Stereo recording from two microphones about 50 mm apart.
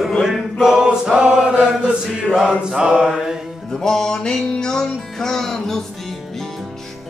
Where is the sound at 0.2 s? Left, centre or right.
Centre.